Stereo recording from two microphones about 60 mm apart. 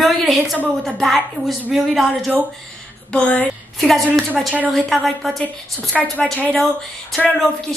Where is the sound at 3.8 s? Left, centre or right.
Centre.